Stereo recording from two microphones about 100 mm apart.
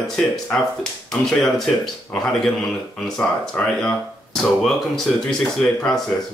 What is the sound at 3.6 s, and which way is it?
Speech, 15° left (ahead or behind).